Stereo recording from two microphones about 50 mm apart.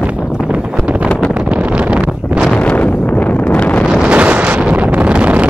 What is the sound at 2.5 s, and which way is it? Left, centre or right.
Wind noise, left.